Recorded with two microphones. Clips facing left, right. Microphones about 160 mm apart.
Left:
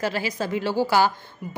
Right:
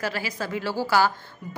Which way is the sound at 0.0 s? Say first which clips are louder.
Left 4 dB; 25° left (ahead or behind).